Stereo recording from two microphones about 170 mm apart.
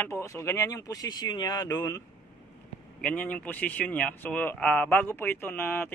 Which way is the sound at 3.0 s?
10° left (ahead or behind).